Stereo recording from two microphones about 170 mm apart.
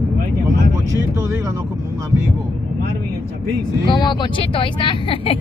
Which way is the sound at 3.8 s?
25° left (ahead or behind).